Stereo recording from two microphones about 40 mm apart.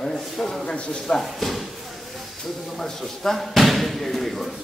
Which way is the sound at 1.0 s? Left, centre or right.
Centre.